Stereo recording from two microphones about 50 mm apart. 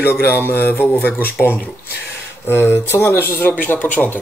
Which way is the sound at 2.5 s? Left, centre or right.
Left.